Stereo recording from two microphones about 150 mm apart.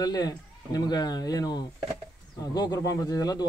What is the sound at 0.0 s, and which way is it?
A man's voice, 25° left (ahead or behind).